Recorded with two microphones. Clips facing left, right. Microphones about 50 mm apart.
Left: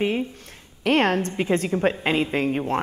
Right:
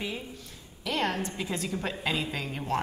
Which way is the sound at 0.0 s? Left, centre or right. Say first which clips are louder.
Left 12 dB; left.